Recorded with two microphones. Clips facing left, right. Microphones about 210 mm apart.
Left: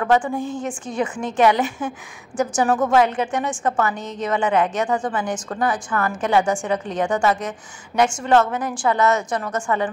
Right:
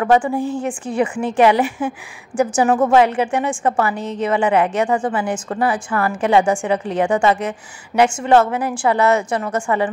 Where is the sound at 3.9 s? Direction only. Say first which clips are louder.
Right 5 dB; 30° right (ahead or behind).